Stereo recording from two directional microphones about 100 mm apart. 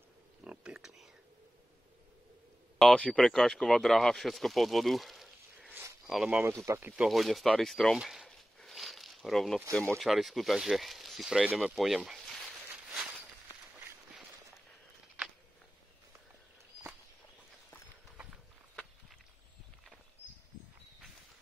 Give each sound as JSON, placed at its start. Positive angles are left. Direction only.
{"t": 0.4, "sound": "a sound", "side_deg": -10}
{"t": 2.8, "sound": "speech", "side_deg": 5}
{"t": 6.4, "sound": "speech", "side_deg": -30}
{"t": 7.0, "sound": "speech", "side_deg": 0}
{"t": 8.0, "sound": "a sound", "side_deg": -5}
{"t": 9.7, "sound": "speech", "side_deg": 5}
{"t": 13.7, "sound": "run", "side_deg": -15}
{"t": 18.1, "sound": "horse", "side_deg": -10}